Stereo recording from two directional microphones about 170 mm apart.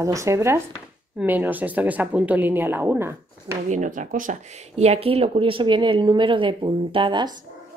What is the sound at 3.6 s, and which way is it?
A woman's voice, 50° right (ahead or behind).